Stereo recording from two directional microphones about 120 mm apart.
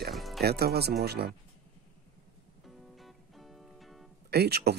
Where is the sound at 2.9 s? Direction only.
Centre (ahead or behind).